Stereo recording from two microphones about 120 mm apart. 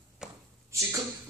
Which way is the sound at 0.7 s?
25° right (ahead or behind).